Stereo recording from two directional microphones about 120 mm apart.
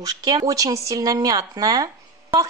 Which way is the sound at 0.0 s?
30° right (ahead or behind).